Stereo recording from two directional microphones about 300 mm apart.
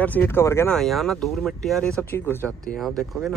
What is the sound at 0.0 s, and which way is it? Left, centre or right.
A man's voice, centre.